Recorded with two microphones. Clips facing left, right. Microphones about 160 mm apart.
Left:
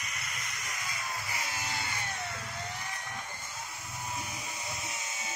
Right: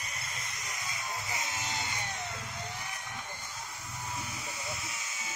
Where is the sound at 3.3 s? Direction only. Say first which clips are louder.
Even; centre (ahead or behind).